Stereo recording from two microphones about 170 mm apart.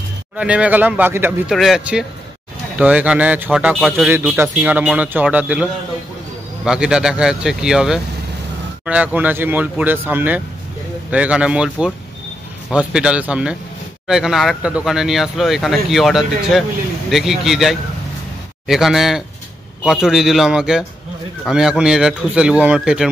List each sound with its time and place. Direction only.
0.4 s speech: 5° right (ahead or behind)